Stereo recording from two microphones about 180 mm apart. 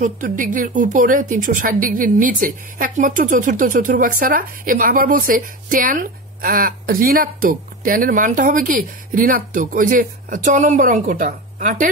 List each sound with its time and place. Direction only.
0.0 s a woman's voice: 45° right (ahead or behind)